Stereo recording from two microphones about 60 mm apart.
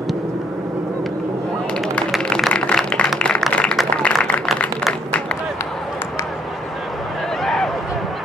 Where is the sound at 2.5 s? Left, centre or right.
Centre.